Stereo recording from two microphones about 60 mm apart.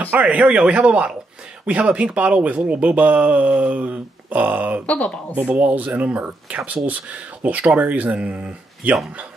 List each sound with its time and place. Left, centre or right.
0.2 s speech: right
4.8 s speech: left
5.6 s speech: right